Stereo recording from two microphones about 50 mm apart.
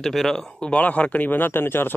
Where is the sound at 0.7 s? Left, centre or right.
Left.